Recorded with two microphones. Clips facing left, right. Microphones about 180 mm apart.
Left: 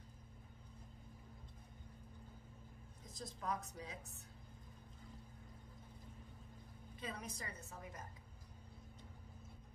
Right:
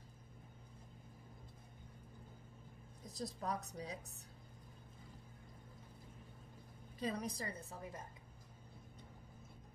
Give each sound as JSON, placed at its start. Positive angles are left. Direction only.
{"t": 3.1, "sound": "a woman's voice", "side_deg": -35}
{"t": 7.0, "sound": "a woman's voice", "side_deg": -35}